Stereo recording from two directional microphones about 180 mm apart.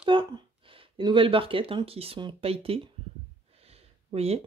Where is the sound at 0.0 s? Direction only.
30° right (ahead or behind).